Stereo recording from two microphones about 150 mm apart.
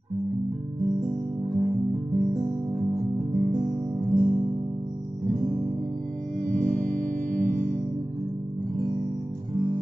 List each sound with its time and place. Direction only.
1.0 s guitar: 25° right (ahead or behind)
2.1 s music: 25° right (ahead or behind)
6.6 s music: 60° right (ahead or behind)
6.9 s music: 10° left (ahead or behind)